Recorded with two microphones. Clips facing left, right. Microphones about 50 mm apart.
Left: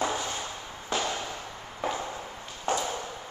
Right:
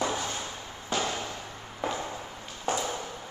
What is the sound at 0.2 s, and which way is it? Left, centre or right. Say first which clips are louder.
Fireworks: even; centre.